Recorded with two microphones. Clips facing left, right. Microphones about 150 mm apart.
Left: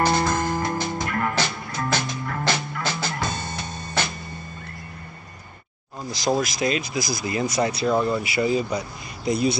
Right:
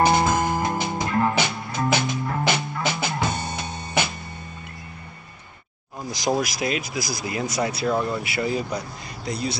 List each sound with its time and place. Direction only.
0.0 s music: 20° right (ahead or behind)
6.0 s speech: 15° right (ahead or behind)